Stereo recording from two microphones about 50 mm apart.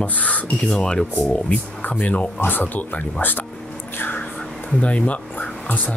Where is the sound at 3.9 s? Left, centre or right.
Left.